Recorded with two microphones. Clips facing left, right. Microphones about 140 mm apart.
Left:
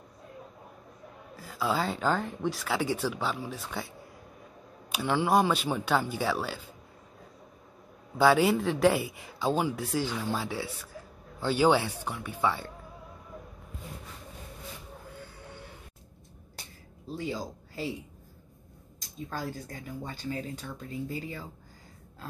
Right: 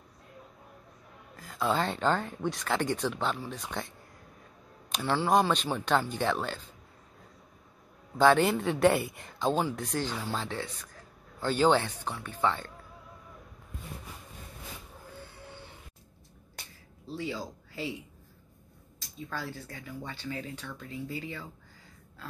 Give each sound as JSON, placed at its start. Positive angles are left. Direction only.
{"t": 1.3, "sound": "speech", "side_deg": 5}
{"t": 4.9, "sound": "speech", "side_deg": 15}
{"t": 8.2, "sound": "speech", "side_deg": 5}
{"t": 17.1, "sound": "speech", "side_deg": 45}
{"t": 19.3, "sound": "speech", "side_deg": 40}